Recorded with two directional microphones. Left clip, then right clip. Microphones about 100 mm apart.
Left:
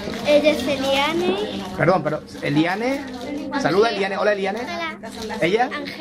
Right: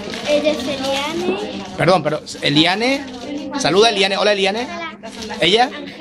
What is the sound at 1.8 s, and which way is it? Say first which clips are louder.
A man's voice: right 4 dB; 25° right (ahead or behind).